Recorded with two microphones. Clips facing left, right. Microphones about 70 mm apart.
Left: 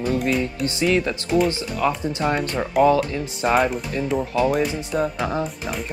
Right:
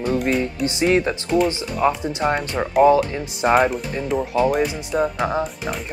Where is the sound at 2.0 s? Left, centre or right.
Right.